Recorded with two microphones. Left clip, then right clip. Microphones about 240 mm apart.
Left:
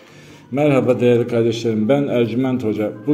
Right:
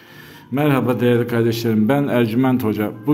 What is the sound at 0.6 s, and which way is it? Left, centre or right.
A man's voice, centre.